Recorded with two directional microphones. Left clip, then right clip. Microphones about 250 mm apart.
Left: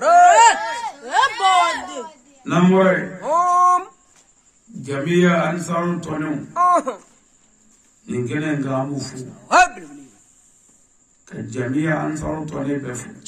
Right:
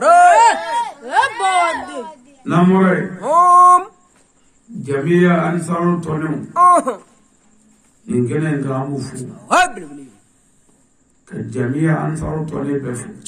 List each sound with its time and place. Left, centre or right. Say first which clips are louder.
0.0 s a sound: right 2 dB; right
0.3 s a sound: right 1 dB; centre
2.4 s a man's voice: right 1 dB; centre
3.2 s male singing: right 9 dB; right
4.8 s a man's voice: right 3 dB; centre
6.5 s speech: right 5 dB; right
8.3 s a man's voice: right 2 dB; centre
9.5 s a man's voice: even; right
11.2 s a man's voice: right 4 dB; centre